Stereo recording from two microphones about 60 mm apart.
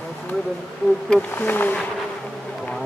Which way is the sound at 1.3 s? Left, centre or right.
Left.